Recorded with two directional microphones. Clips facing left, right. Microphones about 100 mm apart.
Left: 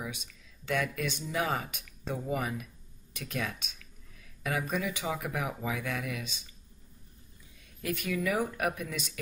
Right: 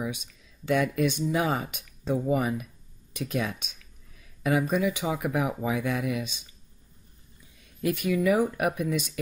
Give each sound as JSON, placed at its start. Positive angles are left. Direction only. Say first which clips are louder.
{"t": 0.7, "sound": "speech", "louder": "right 7 dB", "side_deg": -20}
{"t": 7.8, "sound": "speech", "louder": "right 7 dB", "side_deg": -20}